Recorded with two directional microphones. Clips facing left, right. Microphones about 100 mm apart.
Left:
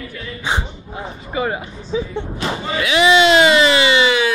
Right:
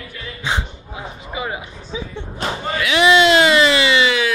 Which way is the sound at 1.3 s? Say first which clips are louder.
Left 5 dB; 40° left (ahead or behind).